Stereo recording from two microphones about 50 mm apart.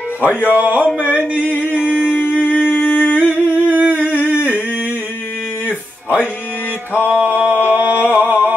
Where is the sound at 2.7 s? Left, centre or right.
Left.